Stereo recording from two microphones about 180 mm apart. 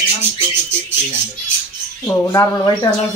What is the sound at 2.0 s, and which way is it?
Speech, 20° left (ahead or behind).